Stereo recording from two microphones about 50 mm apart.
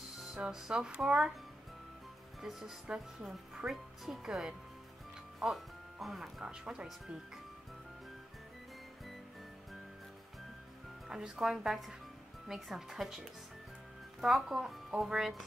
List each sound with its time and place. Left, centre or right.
0.4 s speech: centre
3.2 s speech: centre
11.1 s speech: centre